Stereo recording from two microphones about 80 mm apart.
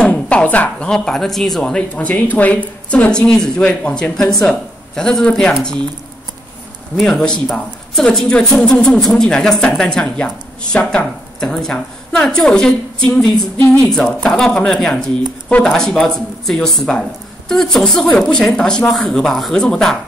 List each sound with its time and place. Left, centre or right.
0.0 s speech: centre
7.0 s speech: centre